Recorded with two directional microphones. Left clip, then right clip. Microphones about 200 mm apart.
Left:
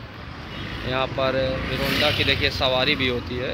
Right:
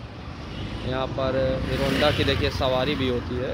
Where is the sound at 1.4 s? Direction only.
20° right (ahead or behind).